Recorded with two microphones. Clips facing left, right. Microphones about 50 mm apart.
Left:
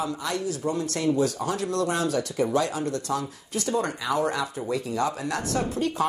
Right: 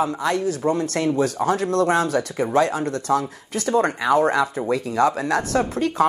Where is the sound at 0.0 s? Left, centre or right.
Right.